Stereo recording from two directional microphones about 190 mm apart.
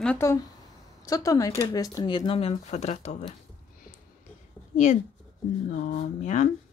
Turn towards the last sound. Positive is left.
turn(degrees=40)  # may be behind; listen again after turning